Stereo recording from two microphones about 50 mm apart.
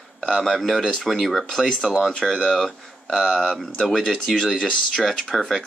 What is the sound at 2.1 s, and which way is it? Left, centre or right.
Speech, centre.